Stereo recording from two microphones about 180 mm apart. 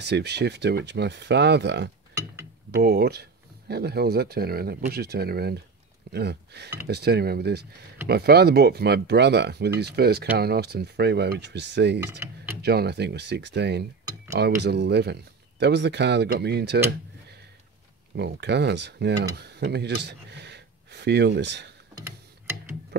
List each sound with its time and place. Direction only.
0.0 s speech: 65° right (ahead or behind)
12.0 s speech: 15° right (ahead or behind)
12.6 s speech: 65° right (ahead or behind)
18.1 s speech: 70° right (ahead or behind)